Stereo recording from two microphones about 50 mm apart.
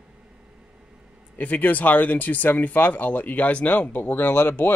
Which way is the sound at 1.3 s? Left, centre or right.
Left.